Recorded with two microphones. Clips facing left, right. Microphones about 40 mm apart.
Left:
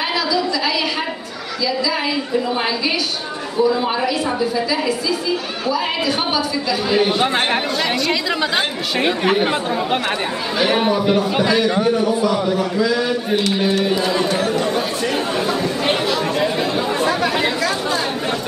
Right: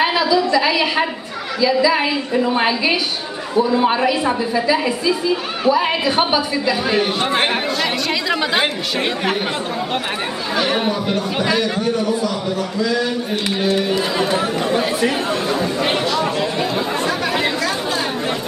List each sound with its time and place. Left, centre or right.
0.0 s a sound: right
1.6 s a woman's voice: right
7.0 s speech: centre
10.6 s speech: centre
11.7 s a man's voice: centre
13.8 s speech: centre